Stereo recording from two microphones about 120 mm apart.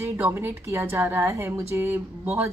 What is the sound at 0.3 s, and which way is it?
A woman's voice, 20° right (ahead or behind).